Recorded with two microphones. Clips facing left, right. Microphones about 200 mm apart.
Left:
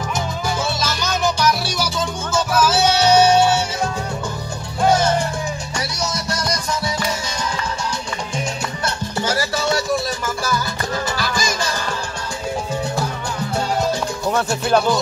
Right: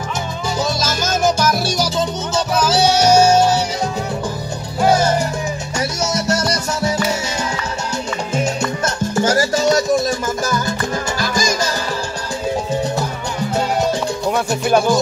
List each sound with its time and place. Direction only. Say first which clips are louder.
0.7 s music: right 3 dB; 45° right (ahead or behind)
3.0 s music: right 1 dB; 45° right (ahead or behind)
8.8 s music: right 5 dB; 45° right (ahead or behind)
14.3 s music: right 1 dB; 15° right (ahead or behind)